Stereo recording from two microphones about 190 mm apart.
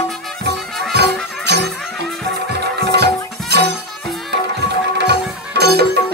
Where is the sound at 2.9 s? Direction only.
60° right (ahead or behind).